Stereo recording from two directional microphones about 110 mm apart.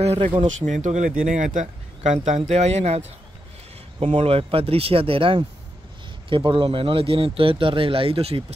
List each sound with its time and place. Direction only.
0.0 s speech: 65° right (ahead or behind)
0.7 s speech: 90° right
4.0 s speech: 60° right (ahead or behind)